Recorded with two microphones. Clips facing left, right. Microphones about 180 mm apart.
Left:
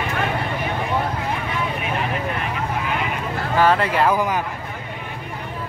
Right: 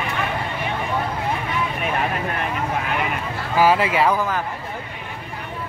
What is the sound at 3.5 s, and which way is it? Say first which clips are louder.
Speech: right 1 dB; 5° right (ahead or behind).